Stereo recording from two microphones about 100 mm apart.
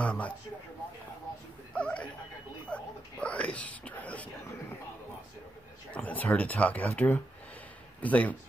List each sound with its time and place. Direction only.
0.0 s speech: 10° left (ahead or behind)
1.7 s a sound: 10° left (ahead or behind)
2.6 s whispering: 10° left (ahead or behind)
5.9 s speech: 15° left (ahead or behind)